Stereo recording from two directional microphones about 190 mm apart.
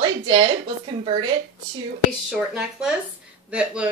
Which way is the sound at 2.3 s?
5° right (ahead or behind).